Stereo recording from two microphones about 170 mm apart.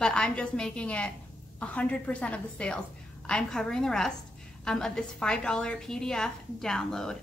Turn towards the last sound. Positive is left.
turn(degrees=5)  # may be behind; listen again after turning